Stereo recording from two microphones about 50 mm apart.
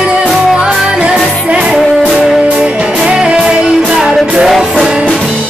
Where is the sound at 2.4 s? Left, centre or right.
Right.